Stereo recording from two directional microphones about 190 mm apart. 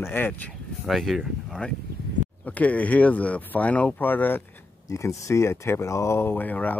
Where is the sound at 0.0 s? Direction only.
10° left (ahead or behind).